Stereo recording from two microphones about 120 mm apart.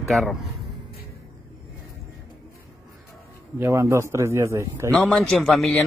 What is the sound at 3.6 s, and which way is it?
A man's voice, 25° right (ahead or behind).